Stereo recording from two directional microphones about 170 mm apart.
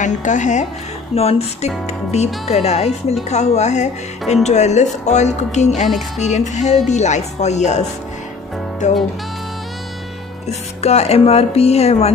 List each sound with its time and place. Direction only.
0.0 s speech: 45° left (ahead or behind)
5.9 s speech: centre (ahead or behind)
6.2 s speech: 45° left (ahead or behind)
8.8 s speech: 45° left (ahead or behind)
10.8 s speech: 40° left (ahead or behind)